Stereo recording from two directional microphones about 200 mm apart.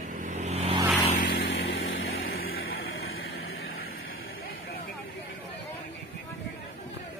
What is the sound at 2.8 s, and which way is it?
Vehicle, 90° left.